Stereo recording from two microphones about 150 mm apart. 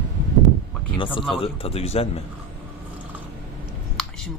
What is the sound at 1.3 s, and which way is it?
Speech, 40° left (ahead or behind).